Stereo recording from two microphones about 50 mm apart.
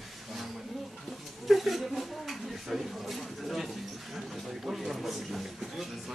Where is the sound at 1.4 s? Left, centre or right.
Centre.